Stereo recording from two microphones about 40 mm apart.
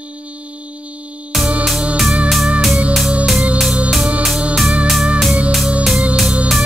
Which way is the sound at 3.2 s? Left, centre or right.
Centre.